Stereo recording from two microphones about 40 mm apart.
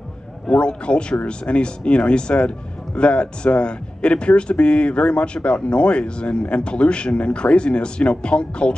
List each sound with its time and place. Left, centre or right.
0.5 s speech: left